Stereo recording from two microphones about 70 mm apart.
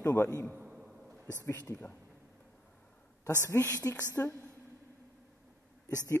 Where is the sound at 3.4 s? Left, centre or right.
Left.